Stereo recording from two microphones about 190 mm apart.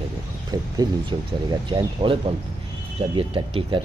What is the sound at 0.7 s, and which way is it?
Speech, 25° right (ahead or behind).